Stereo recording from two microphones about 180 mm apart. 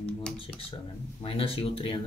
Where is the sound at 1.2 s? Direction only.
30° left (ahead or behind).